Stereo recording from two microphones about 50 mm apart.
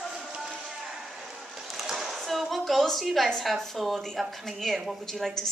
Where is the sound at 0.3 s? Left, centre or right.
Centre.